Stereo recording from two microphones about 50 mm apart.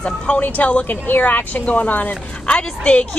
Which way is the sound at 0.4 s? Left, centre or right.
Left.